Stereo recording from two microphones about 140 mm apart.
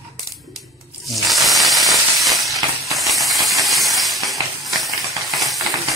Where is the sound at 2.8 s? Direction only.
Centre (ahead or behind).